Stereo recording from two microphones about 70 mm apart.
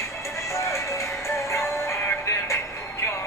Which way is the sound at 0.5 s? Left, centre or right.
Left.